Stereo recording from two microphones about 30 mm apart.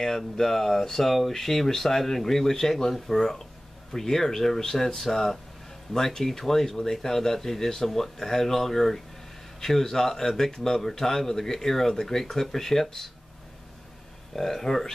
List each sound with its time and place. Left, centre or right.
0.0 s a man's voice: centre
14.3 s a man's voice: centre